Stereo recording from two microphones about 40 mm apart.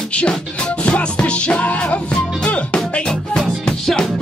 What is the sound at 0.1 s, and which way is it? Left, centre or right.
Music, left.